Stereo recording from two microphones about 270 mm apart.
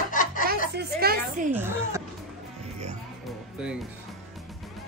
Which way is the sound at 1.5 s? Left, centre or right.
Centre.